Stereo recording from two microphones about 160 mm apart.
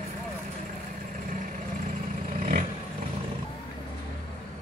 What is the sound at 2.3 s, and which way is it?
Vehicle, 60° right (ahead or behind).